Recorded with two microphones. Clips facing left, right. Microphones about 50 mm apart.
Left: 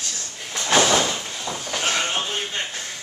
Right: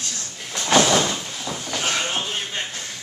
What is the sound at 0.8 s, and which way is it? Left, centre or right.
Vehicle, centre.